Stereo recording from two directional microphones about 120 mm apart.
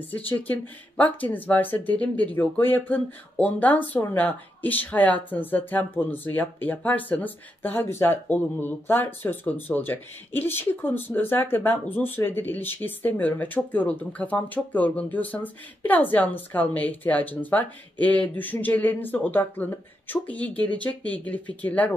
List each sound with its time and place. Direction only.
0.3 s speech: 15° left (ahead or behind)